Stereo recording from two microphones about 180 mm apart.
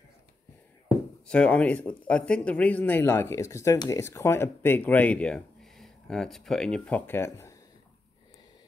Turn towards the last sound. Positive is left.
turn(degrees=15)  # may be behind; listen again after turning